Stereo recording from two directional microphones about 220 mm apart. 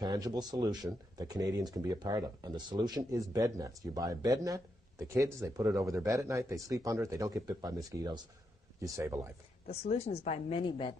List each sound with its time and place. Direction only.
0.0 s speech: 20° right (ahead or behind)
9.7 s a woman's voice: 30° left (ahead or behind)